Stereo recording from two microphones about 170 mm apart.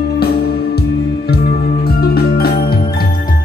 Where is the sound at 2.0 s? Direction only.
65° left (ahead or behind).